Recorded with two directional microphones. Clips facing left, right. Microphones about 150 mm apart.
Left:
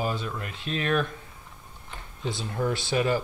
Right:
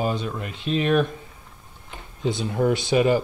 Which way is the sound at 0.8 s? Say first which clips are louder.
Right 6 dB; 15° right (ahead or behind).